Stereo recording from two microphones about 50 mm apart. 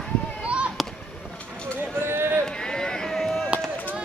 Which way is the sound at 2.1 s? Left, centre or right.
Right.